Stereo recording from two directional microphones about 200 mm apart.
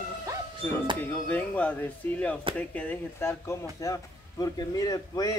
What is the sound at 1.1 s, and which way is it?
Speech, 5° left (ahead or behind).